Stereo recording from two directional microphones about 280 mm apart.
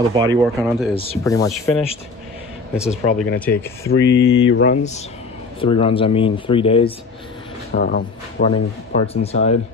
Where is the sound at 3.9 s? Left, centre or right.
Left.